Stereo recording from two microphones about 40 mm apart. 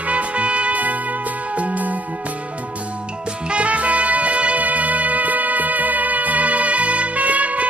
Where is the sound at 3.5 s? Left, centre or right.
Right.